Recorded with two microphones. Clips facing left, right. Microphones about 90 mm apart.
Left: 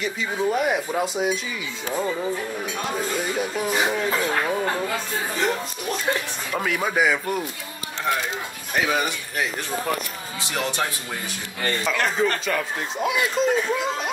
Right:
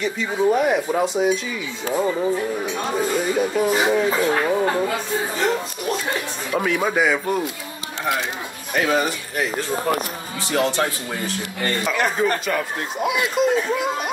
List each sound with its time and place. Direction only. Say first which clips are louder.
0.6 s speech: right 4 dB; centre (ahead or behind)
1.9 s speech: right 5 dB; 10° right (ahead or behind)
6.5 s speech: right 3 dB; 5° right (ahead or behind)
8.7 s speech: right 3 dB; 5° left (ahead or behind)
10.5 s speech: right 6 dB; 15° right (ahead or behind)